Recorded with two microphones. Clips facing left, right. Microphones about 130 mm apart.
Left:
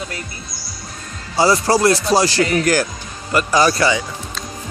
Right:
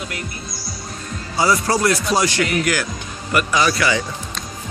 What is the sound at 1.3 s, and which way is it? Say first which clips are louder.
A man's voice: left 3 dB; 30° left (ahead or behind).